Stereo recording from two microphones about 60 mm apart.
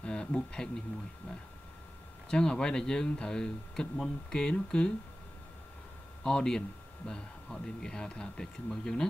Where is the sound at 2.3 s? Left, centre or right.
Centre.